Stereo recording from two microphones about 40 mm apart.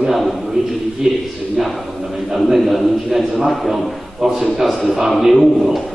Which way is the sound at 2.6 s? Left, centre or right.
Centre.